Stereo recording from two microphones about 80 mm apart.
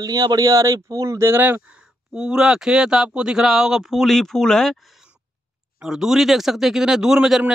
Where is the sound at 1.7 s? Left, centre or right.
Centre.